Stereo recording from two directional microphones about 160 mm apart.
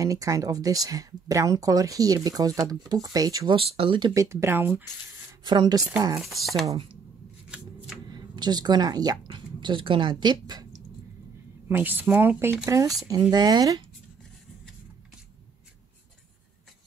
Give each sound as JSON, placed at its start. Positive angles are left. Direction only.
{"t": 0.0, "sound": "speech", "side_deg": -20}
{"t": 3.5, "sound": "speech", "side_deg": -35}
{"t": 4.1, "sound": "speech", "side_deg": -20}
{"t": 5.4, "sound": "speech", "side_deg": -25}
{"t": 6.2, "sound": "speech", "side_deg": 0}
{"t": 7.5, "sound": "a sound", "side_deg": -5}
{"t": 8.1, "sound": "speech", "side_deg": -25}
{"t": 11.6, "sound": "speech", "side_deg": -10}